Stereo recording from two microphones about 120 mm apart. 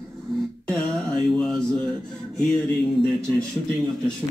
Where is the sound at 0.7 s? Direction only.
5° left (ahead or behind).